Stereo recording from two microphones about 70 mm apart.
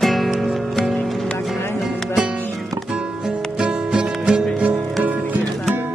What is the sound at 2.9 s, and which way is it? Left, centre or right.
Music, centre.